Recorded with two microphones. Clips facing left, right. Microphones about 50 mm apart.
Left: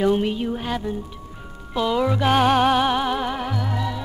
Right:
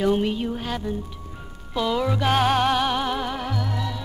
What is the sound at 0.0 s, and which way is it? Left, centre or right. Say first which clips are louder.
Music: left 2 dB; centre.